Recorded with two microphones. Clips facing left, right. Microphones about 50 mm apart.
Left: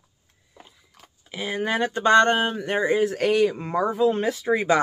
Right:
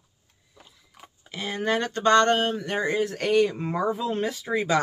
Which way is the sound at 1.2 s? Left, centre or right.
Centre.